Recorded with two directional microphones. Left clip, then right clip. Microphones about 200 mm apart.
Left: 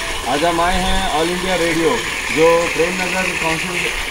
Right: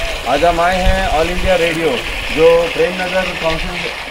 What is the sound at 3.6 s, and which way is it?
Speech, 40° left (ahead or behind).